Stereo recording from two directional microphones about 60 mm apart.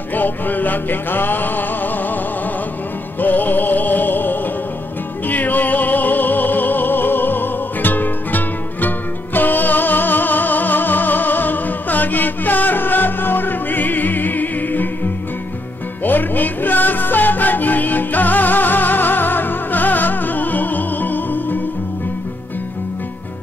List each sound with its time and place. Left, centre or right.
0.1 s music: left
3.2 s music: left
16.0 s music: left